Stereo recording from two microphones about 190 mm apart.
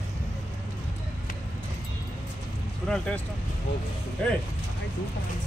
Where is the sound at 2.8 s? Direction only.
5° left (ahead or behind).